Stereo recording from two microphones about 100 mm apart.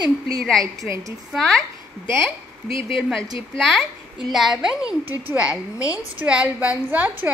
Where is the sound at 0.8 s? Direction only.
35° right (ahead or behind).